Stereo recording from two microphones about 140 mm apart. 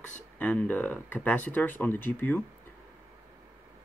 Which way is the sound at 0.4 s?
10° left (ahead or behind).